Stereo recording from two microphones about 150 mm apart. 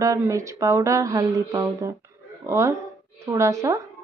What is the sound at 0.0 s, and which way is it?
Speech, 20° right (ahead or behind).